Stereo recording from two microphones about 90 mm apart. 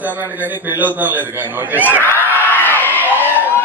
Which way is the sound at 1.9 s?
20° left (ahead or behind).